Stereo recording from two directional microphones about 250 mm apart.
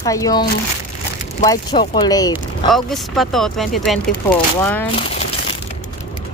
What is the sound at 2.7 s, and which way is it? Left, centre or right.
Speech, centre.